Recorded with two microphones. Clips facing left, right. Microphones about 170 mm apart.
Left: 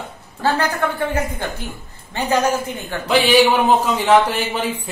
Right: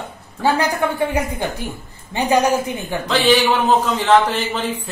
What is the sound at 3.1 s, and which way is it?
A man's voice, 10° left (ahead or behind).